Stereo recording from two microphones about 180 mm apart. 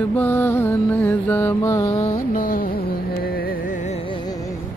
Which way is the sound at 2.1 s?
50° left (ahead or behind).